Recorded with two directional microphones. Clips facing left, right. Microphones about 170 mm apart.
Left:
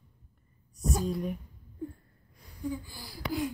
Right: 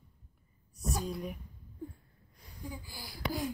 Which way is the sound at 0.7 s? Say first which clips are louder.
Left 5 dB; centre (ahead or behind).